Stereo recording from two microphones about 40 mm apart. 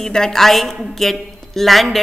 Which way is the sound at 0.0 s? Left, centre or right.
Centre.